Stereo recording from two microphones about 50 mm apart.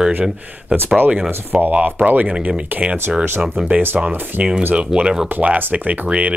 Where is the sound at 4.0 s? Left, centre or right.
Centre.